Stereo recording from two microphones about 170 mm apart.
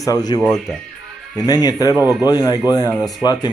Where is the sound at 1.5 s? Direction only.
25° left (ahead or behind).